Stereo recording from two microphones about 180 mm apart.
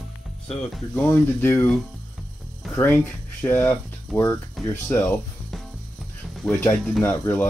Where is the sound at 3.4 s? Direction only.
15° left (ahead or behind).